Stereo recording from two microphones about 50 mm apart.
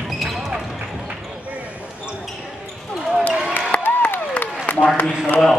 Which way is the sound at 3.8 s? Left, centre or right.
Left.